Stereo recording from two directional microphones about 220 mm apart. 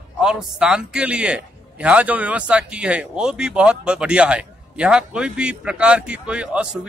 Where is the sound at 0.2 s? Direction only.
5° right (ahead or behind).